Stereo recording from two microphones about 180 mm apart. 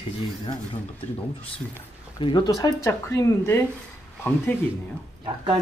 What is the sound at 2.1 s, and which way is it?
Speech, 25° left (ahead or behind).